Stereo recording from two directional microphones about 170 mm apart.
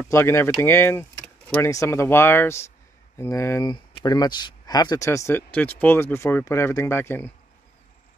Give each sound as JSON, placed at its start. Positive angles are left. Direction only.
{"t": 0.1, "sound": "speech", "side_deg": 15}